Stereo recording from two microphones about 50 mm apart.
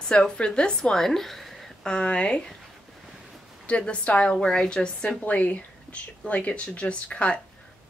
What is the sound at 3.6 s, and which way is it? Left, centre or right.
Speech, left.